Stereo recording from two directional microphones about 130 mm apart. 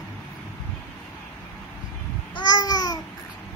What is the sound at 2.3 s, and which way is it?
Babbling, 30° left (ahead or behind).